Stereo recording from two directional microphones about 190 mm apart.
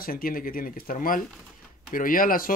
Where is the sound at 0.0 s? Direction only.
50° left (ahead or behind).